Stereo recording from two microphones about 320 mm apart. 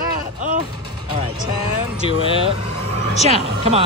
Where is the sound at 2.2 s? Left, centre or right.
Centre.